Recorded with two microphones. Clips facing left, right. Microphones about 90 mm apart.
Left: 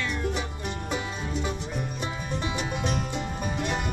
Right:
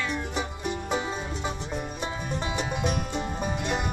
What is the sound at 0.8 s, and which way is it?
Music, 35° right (ahead or behind).